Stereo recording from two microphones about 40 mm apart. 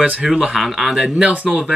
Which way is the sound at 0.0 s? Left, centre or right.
Right.